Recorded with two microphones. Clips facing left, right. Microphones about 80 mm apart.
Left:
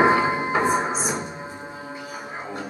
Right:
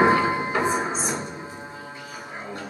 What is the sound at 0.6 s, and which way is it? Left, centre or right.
Music, centre.